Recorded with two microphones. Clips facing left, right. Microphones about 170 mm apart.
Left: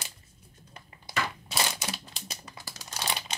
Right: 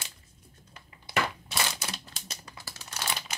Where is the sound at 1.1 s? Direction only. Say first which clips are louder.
Right 3 dB; 45° left (ahead or behind).